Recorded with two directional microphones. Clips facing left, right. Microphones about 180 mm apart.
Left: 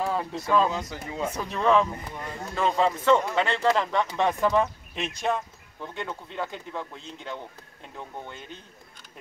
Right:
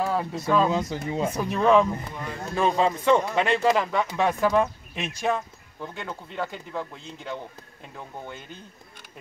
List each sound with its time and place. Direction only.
0.0 s speech: 5° right (ahead or behind)
0.7 s speech: 25° right (ahead or behind)
1.2 s speech: 10° right (ahead or behind)